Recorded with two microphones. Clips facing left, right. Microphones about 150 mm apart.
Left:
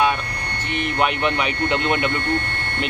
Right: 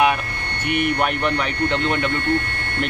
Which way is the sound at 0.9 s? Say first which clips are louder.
Left 1 dB; 5° left (ahead or behind).